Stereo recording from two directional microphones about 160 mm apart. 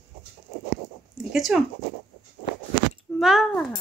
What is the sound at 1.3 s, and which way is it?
Speech, centre (ahead or behind).